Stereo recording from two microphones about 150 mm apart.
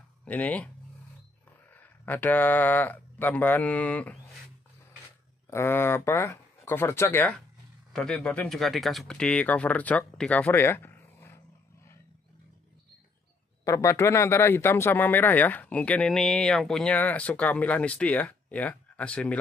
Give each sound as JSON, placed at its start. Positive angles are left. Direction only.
{"t": 0.2, "sound": "speech", "side_deg": 10}
{"t": 1.7, "sound": "speech", "side_deg": 10}
{"t": 5.5, "sound": "speech", "side_deg": 15}
{"t": 13.7, "sound": "speech", "side_deg": 20}